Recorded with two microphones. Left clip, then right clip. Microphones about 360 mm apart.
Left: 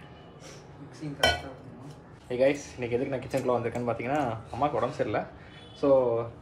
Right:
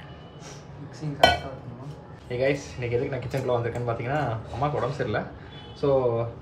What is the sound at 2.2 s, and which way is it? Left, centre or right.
Speech, centre.